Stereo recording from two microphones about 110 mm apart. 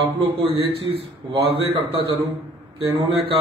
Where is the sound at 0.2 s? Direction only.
50° right (ahead or behind).